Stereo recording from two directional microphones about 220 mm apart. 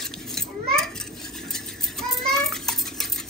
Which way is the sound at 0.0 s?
Centre (ahead or behind).